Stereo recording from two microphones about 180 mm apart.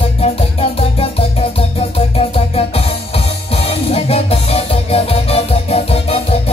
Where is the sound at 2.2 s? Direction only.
30° left (ahead or behind).